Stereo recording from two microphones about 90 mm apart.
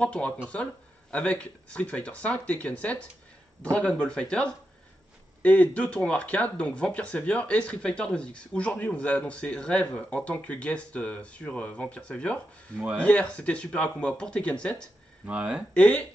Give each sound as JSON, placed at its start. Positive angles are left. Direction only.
{"t": 0.0, "sound": "speech", "side_deg": 15}
{"t": 12.7, "sound": "speech", "side_deg": -15}
{"t": 13.0, "sound": "speech", "side_deg": 15}
{"t": 15.2, "sound": "speech", "side_deg": -15}
{"t": 15.7, "sound": "speech", "side_deg": 15}